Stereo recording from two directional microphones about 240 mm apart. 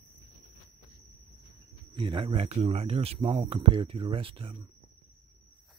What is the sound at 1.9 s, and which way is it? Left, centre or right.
Speech, right.